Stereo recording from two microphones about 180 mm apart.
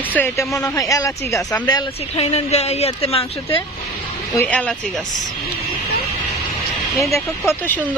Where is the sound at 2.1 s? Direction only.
35° left (ahead or behind).